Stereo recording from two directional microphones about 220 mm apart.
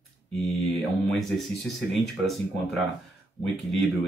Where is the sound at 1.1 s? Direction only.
Centre (ahead or behind).